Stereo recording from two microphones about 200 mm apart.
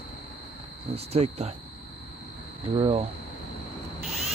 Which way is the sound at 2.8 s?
30° right (ahead or behind).